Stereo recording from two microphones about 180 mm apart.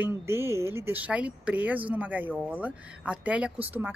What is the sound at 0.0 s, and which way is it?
Speech, 15° right (ahead or behind).